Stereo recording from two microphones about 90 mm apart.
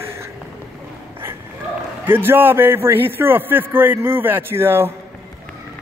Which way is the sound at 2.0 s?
25° right (ahead or behind).